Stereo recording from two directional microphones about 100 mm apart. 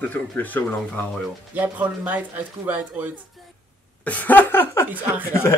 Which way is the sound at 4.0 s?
15° left (ahead or behind).